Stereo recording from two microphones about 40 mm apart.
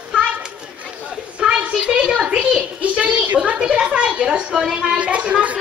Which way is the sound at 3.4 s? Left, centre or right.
Right.